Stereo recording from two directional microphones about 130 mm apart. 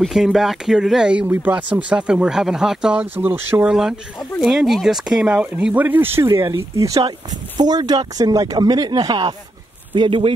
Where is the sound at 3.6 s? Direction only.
5° right (ahead or behind); by 9.3 s 30° right (ahead or behind).